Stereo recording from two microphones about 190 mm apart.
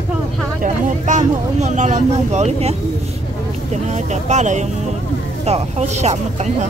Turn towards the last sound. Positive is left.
turn(degrees=-35)  # may be behind; listen again after turning